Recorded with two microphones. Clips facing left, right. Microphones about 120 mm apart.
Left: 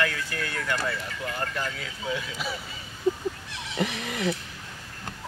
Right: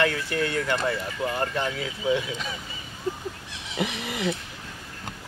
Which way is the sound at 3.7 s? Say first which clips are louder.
Even; 10° right (ahead or behind).